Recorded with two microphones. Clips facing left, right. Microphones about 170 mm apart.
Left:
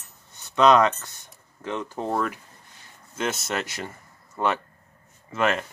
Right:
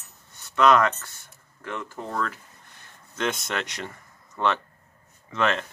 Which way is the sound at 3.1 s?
5° left (ahead or behind).